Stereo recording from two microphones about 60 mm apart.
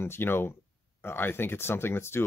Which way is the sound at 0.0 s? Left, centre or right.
Left.